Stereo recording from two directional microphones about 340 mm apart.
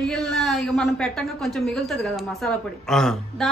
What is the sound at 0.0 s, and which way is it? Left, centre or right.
A woman's voice, centre.